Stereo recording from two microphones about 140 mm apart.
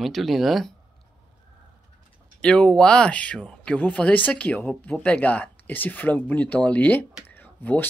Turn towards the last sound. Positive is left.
turn(degrees=15)  # may be behind; listen again after turning